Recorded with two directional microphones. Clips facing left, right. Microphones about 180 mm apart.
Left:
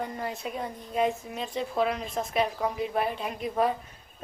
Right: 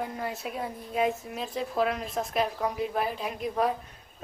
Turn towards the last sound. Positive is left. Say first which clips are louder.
# left 1 dB
turn(degrees=0)  # may be behind; listen again after turning